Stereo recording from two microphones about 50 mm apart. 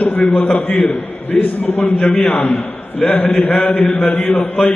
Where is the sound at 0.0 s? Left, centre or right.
Left.